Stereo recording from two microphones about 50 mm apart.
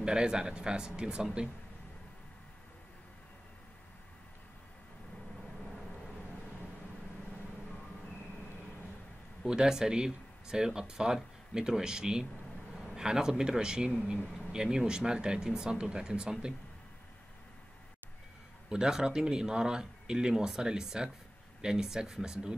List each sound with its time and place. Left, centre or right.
0.0 s speech: centre
9.4 s speech: centre
18.7 s speech: centre